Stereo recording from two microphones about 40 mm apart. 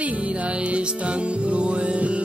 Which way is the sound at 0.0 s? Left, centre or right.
Right.